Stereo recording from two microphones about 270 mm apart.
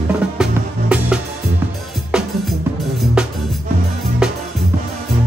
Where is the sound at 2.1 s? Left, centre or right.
Centre.